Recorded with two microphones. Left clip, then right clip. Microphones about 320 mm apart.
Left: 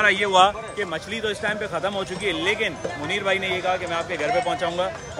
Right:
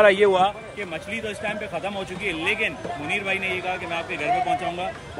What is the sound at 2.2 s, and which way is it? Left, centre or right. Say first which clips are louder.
Speech: even; left.